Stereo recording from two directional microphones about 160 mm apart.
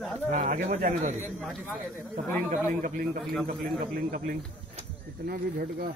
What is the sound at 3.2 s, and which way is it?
Speech, 5° left (ahead or behind).